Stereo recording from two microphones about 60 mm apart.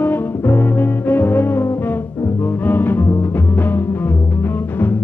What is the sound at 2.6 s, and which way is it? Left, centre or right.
Music, left.